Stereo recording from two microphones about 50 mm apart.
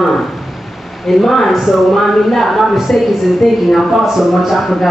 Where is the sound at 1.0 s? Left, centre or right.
Centre.